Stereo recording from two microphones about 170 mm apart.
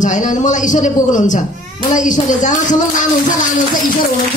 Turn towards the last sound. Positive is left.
turn(degrees=50)  # may be behind; listen again after turning